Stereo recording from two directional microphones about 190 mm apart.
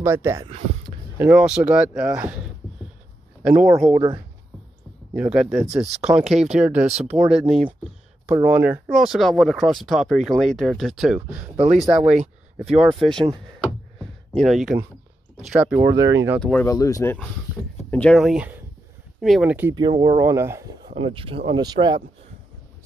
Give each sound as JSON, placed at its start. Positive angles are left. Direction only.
{"t": 0.0, "sound": "speech", "side_deg": -15}
{"t": 3.8, "sound": "speech", "side_deg": -10}
{"t": 5.1, "sound": "speech", "side_deg": -5}
{"t": 14.4, "sound": "speech", "side_deg": 0}
{"t": 16.3, "sound": "speech", "side_deg": 5}
{"t": 16.6, "sound": "speech", "side_deg": 15}
{"t": 17.9, "sound": "speech", "side_deg": 5}
{"t": 19.7, "sound": "speech", "side_deg": -25}
{"t": 20.9, "sound": "speech", "side_deg": -30}